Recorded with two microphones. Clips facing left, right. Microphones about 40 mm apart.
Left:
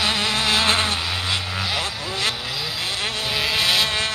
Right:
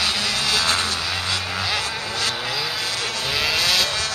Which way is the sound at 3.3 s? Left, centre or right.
Centre.